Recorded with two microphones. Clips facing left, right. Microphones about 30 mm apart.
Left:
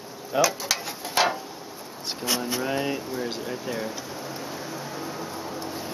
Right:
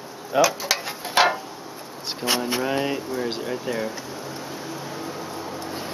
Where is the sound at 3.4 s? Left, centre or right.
Centre.